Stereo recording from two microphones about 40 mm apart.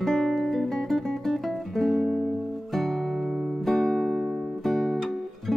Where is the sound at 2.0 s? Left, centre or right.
Centre.